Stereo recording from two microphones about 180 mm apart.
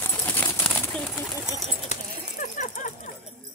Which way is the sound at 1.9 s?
40° left (ahead or behind).